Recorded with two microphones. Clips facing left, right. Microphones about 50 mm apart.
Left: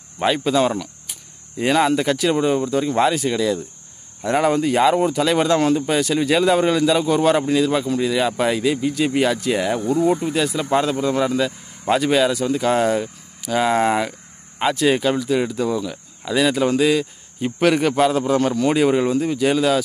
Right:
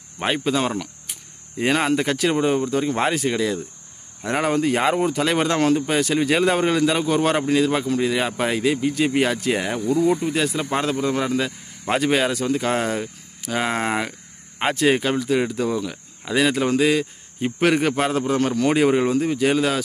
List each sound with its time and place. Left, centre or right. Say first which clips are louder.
0.4 s speech: left 4 dB; right
9.8 s speech: left 1 dB; left
10.2 s speech: left 1 dB; right
12.8 s speech: left 5 dB; centre
14.6 s speech: left 1 dB; right